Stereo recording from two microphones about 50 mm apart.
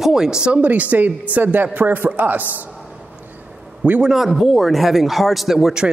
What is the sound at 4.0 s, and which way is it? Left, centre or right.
A man's voice, centre.